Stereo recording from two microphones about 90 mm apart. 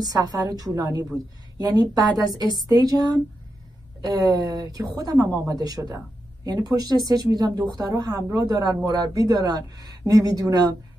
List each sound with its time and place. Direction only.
0.0 s a woman's voice: 45° right (ahead or behind)